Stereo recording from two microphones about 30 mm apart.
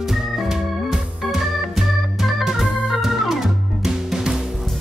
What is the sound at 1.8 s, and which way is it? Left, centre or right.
Organ, centre.